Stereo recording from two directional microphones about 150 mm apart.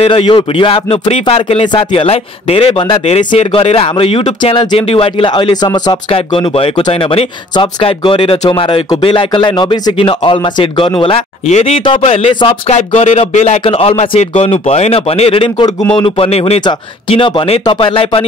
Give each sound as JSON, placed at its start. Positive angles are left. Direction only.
{"t": 0.0, "sound": "speech", "side_deg": 35}